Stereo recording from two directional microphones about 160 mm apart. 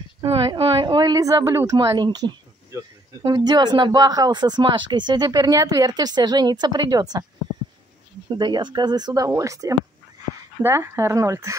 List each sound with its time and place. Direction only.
0.2 s a woman's voice: 30° right (ahead or behind)
8.3 s speech: 25° right (ahead or behind)